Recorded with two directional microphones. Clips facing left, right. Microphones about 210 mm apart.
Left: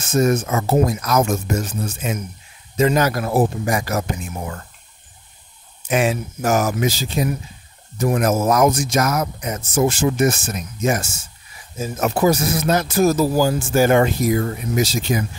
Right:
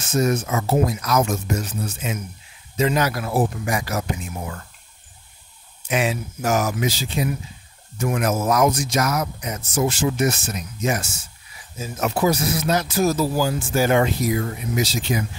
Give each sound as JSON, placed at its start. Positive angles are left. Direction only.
{"t": 0.0, "sound": "speech", "side_deg": 45}
{"t": 5.9, "sound": "speech", "side_deg": 45}